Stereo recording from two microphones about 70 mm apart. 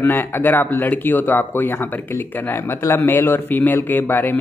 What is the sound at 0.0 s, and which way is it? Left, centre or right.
Speech, left.